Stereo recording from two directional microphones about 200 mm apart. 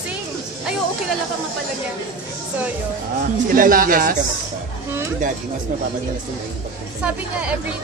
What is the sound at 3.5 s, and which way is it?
Speech, 45° right (ahead or behind).